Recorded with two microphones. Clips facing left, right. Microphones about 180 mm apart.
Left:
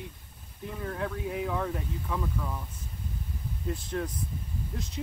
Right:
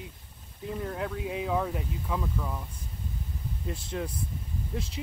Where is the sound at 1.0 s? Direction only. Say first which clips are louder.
Even; 20° right (ahead or behind).